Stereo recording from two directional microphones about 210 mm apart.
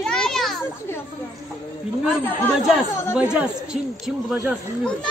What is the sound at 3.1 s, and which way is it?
A child's voice, 5° right (ahead or behind).